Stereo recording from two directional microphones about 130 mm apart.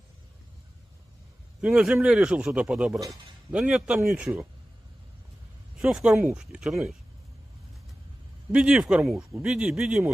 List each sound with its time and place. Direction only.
1.6 s speech: 5° right (ahead or behind)
3.0 s a man's voice: 25° right (ahead or behind)
3.5 s speech: 10° right (ahead or behind)
5.8 s speech: 10° right (ahead or behind)
8.5 s speech: 5° right (ahead or behind)